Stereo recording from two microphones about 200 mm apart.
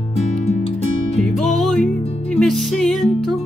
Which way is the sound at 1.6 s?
5° left (ahead or behind).